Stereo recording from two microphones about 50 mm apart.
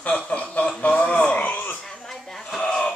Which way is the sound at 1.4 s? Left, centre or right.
Left.